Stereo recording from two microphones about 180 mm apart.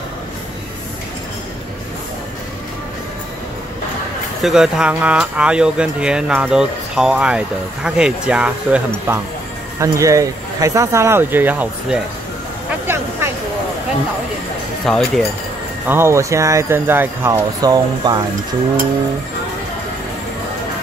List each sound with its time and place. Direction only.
4.4 s speech: 5° right (ahead or behind)
12.8 s a sound: 15° right (ahead or behind)
14.9 s speech: centre (ahead or behind)
15.9 s speech: 15° right (ahead or behind)